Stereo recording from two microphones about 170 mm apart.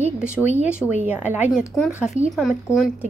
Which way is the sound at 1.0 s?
10° right (ahead or behind).